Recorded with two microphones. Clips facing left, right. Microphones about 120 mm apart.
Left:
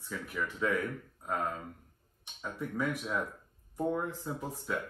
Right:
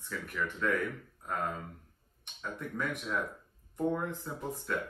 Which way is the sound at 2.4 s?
5° left (ahead or behind).